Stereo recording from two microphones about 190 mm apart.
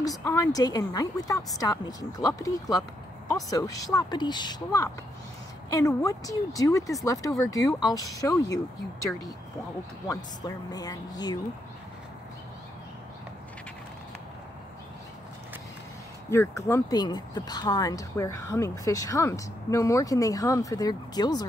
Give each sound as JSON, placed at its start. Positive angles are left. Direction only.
{"t": 0.0, "sound": "speech", "side_deg": 15}
{"t": 10.0, "sound": "speech", "side_deg": 20}
{"t": 16.3, "sound": "speech", "side_deg": 15}